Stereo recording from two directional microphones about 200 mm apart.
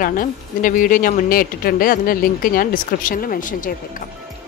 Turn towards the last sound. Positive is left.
turn(degrees=40)  # may be behind; listen again after turning